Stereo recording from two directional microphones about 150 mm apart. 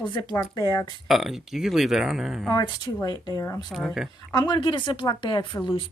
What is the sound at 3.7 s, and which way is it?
Speech, centre (ahead or behind).